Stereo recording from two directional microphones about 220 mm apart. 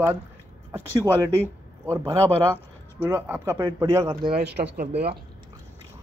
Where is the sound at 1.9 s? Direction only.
15° right (ahead or behind).